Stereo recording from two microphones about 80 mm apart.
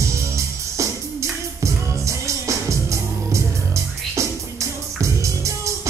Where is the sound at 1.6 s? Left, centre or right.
Right.